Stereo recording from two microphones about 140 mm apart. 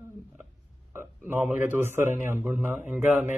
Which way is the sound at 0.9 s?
15° right (ahead or behind).